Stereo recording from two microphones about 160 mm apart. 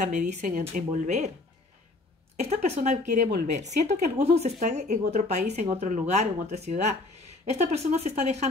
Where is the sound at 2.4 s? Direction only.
45° right (ahead or behind).